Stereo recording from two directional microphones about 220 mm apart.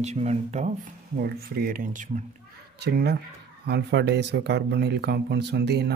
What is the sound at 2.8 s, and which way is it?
Speech, 45° right (ahead or behind).